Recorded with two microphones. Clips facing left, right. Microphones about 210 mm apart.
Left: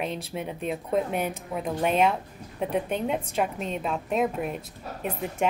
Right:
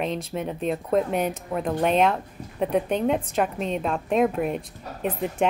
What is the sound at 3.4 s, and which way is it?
A woman's voice, centre (ahead or behind).